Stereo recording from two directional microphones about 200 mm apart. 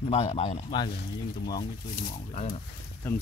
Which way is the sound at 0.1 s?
30° left (ahead or behind).